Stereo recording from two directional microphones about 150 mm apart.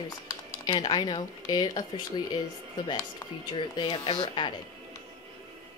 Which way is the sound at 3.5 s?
35° left (ahead or behind).